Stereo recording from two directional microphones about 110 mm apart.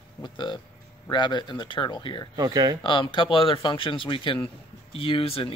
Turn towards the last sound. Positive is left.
turn(degrees=55)  # may be behind; listen again after turning